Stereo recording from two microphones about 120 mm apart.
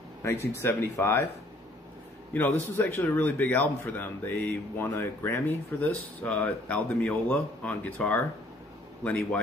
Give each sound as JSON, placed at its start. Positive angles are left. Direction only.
{"t": 0.2, "sound": "speech", "side_deg": 20}
{"t": 2.3, "sound": "a man's voice", "side_deg": 15}